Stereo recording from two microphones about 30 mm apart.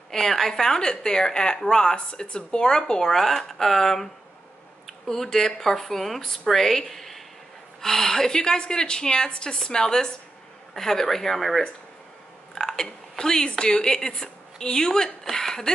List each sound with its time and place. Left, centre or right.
0.1 s a woman's voice: centre
2.2 s a woman's voice: left
3.2 s speech: centre
6.9 s a sound: centre
7.9 s a woman's voice: left; by 11.6 s centre
12.5 s a sound: centre
13.2 s a woman's voice: left